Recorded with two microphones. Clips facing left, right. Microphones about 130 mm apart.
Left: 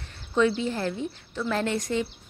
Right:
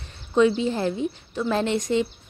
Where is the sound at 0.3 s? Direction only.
20° right (ahead or behind).